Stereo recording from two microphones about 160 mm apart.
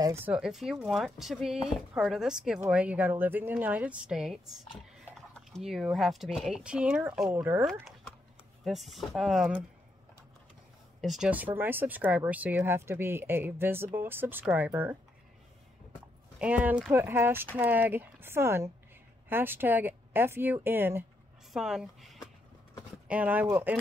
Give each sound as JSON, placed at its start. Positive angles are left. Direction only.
{"t": 0.0, "sound": "speech", "side_deg": -15}
{"t": 0.3, "sound": "speech", "side_deg": -5}
{"t": 8.6, "sound": "speech", "side_deg": 0}
{"t": 11.0, "sound": "speech", "side_deg": 0}
{"t": 16.3, "sound": "speech", "side_deg": -10}